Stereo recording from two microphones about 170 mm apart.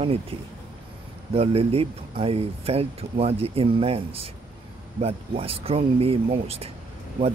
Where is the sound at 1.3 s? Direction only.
35° right (ahead or behind).